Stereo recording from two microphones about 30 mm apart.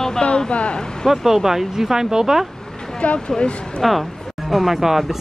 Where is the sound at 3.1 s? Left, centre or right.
Left.